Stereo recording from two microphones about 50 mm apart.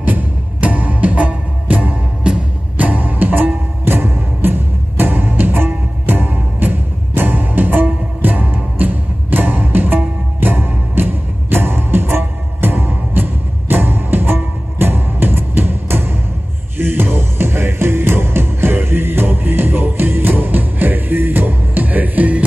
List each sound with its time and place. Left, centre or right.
0.0 s music: right